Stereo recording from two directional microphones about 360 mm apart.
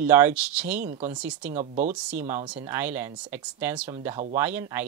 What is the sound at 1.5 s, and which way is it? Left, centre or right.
Speech, centre.